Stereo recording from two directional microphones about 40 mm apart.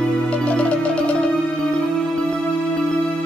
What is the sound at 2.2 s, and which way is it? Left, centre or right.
Music, left.